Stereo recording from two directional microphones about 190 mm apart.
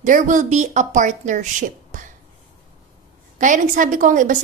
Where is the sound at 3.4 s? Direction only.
40° right (ahead or behind).